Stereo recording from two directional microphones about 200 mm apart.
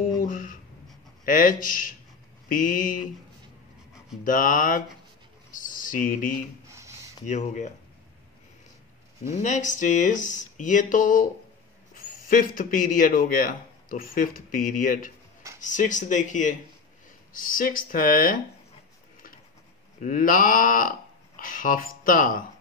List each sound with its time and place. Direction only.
0.2 s speech: 45° left (ahead or behind)
4.2 s speech: 40° left (ahead or behind)
6.7 s a sound: 15° right (ahead or behind)
7.2 s speech: 35° left (ahead or behind)
9.3 s a man's voice: 35° left (ahead or behind)
20.0 s speech: 45° left (ahead or behind)